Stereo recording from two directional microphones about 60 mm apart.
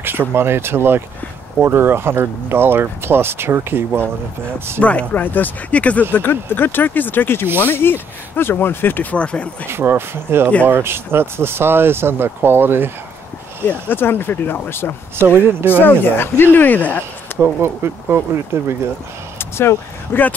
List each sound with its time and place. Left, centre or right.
0.3 s speech: right
4.7 s speech: left
6.1 s speech: left
9.1 s speech: centre
9.7 s speech: right
13.7 s speech: left
15.2 s speech: right
15.8 s speech: left
17.4 s speech: right
19.3 s a sound: left